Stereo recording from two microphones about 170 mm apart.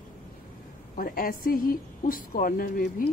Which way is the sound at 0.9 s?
55° left (ahead or behind).